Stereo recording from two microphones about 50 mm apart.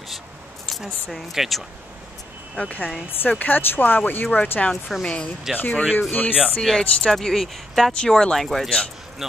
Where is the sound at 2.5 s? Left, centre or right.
Left.